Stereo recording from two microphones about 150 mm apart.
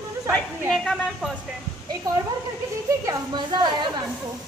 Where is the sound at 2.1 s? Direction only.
25° right (ahead or behind).